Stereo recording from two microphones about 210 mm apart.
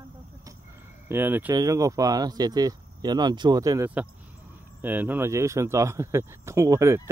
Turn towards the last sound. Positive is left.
turn(degrees=-15)  # may be behind; listen again after turning